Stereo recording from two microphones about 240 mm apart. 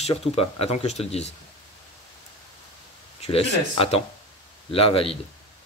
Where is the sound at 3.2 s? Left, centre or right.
Left.